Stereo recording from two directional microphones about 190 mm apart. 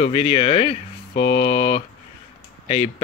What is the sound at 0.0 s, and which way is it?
Speech, 30° left (ahead or behind).